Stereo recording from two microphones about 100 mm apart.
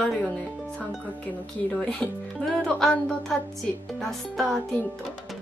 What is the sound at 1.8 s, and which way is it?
Speech, 5° left (ahead or behind).